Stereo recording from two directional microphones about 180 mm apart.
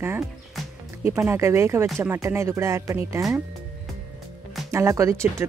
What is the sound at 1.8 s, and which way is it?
Speech, centre (ahead or behind).